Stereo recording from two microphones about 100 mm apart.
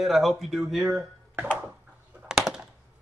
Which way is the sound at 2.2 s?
5° right (ahead or behind).